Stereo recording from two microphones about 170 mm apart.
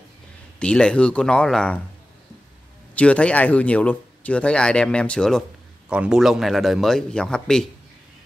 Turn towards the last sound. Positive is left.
turn(degrees=5)  # may be behind; listen again after turning